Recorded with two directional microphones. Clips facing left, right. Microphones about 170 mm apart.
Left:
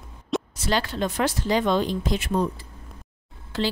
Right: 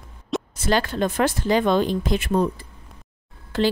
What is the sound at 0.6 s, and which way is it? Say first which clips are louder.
Speech: right 5 dB; 50° right (ahead or behind).